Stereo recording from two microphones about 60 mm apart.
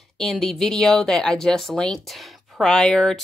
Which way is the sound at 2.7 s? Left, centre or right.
Centre.